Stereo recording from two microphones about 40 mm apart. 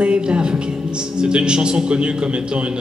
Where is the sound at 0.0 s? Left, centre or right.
Right.